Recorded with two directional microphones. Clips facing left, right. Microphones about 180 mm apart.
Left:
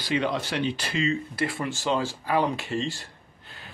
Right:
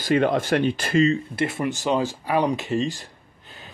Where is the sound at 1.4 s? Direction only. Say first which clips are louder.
Right 4 dB; 20° right (ahead or behind).